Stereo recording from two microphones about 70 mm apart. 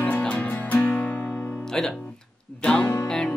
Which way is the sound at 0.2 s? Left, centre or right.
Centre.